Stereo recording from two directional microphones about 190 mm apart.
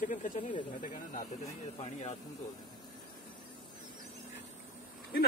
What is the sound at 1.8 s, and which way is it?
Speech, 35° left (ahead or behind).